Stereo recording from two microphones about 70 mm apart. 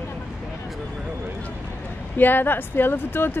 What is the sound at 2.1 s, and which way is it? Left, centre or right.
Speech, left.